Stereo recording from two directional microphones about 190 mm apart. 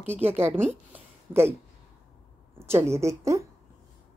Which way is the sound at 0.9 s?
15° right (ahead or behind).